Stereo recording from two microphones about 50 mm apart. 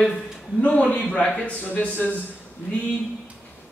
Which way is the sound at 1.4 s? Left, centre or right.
Left.